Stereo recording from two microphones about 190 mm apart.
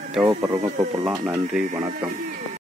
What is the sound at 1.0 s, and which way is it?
Speech, 5° right (ahead or behind).